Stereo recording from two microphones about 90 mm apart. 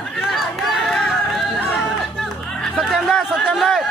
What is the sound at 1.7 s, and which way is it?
Music, 5° left (ahead or behind).